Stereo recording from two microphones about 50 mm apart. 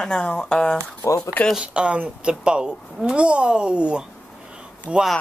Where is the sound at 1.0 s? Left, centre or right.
Left.